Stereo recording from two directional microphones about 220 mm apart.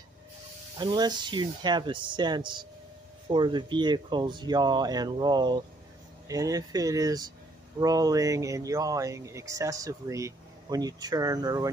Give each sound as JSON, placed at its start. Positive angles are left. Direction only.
{"t": 0.7, "sound": "speech", "side_deg": -20}